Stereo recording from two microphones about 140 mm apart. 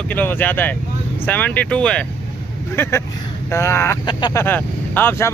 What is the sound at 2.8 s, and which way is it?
Speech, 15° left (ahead or behind).